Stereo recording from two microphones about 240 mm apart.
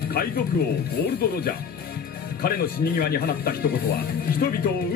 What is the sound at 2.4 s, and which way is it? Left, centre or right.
A man's voice, left.